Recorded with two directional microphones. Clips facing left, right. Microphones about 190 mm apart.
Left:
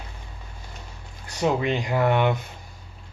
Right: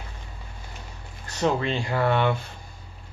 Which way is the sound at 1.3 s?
15° left (ahead or behind).